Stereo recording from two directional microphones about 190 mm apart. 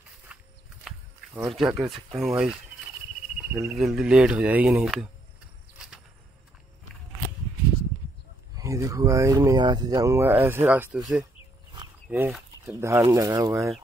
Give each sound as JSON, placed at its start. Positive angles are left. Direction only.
{"t": 0.3, "sound": "walk", "side_deg": -5}
{"t": 0.8, "sound": "speech", "side_deg": -5}
{"t": 3.3, "sound": "cricket", "side_deg": -10}
{"t": 3.7, "sound": "speech", "side_deg": -5}
{"t": 8.5, "sound": "speech", "side_deg": -15}